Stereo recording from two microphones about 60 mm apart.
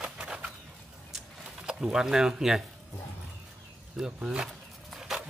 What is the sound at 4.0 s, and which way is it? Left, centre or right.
Speech, centre.